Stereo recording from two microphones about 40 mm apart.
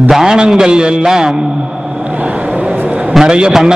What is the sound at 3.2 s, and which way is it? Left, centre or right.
Speech, right.